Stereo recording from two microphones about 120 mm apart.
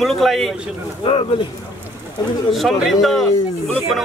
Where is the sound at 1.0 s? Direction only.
50° left (ahead or behind).